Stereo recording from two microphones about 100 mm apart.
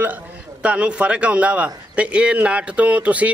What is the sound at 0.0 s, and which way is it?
A man's voice, 15° right (ahead or behind).